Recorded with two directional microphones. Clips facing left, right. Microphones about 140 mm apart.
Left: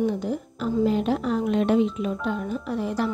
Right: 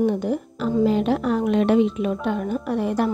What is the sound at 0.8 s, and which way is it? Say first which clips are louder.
Speech: right 3 dB; 85° right.